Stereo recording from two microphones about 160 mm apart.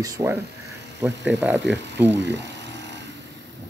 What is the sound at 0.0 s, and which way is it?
Speech, 20° right (ahead or behind).